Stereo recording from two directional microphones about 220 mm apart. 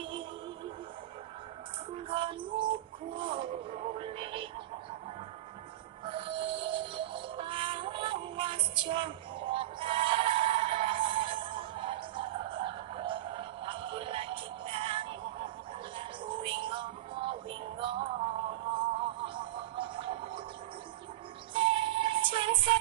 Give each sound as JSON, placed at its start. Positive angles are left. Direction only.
{"t": 2.0, "sound": "music", "side_deg": -25}
{"t": 6.0, "sound": "music", "side_deg": -25}
{"t": 21.5, "sound": "music", "side_deg": -25}